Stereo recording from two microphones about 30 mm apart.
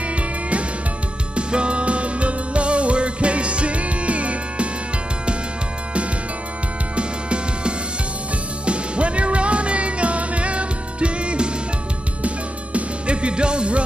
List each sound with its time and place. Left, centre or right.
0.1 s music: right
7.0 s music: right
12.7 s music: right